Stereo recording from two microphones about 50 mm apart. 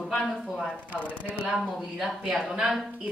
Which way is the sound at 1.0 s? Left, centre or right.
Left.